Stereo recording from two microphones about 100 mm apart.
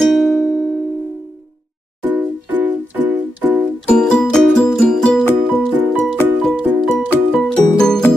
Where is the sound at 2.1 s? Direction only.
20° right (ahead or behind).